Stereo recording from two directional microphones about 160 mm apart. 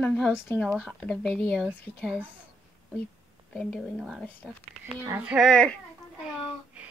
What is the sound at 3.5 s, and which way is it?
Speech, centre (ahead or behind).